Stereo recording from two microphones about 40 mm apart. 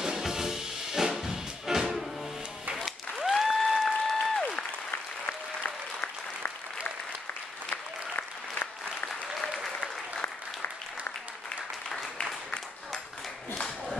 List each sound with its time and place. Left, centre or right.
0.0 s music: centre
2.8 s applause: centre
5.6 s applause: left
11.9 s applause: centre